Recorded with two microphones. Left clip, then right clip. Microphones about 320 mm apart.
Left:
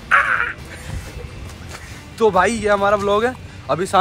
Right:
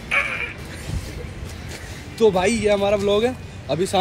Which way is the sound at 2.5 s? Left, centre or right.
Centre.